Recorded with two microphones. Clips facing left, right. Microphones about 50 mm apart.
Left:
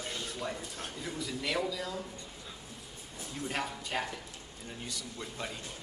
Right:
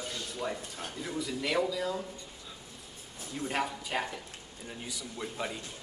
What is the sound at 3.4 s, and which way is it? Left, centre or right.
A man's voice, centre.